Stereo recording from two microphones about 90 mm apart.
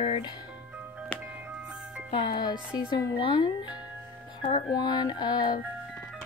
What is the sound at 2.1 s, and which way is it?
Speech, 55° left (ahead or behind).